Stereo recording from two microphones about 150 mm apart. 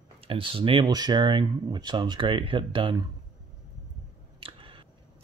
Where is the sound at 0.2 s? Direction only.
35° right (ahead or behind).